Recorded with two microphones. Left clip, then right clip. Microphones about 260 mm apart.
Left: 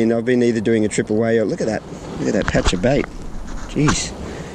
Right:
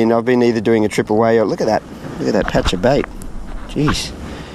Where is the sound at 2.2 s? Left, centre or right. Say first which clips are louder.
Right 3 dB; centre.